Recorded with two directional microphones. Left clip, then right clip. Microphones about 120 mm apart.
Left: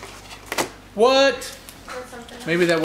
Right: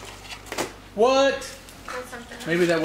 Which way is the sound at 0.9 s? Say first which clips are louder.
Left 3 dB; 15° left (ahead or behind).